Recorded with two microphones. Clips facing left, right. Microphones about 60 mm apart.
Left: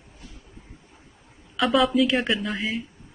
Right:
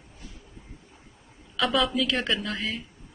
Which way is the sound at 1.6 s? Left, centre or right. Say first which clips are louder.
Left 5 dB; centre.